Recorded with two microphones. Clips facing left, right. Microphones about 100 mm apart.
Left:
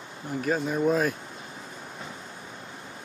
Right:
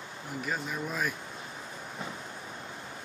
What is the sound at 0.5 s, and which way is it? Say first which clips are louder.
Speech: left 11 dB; 40° left (ahead or behind).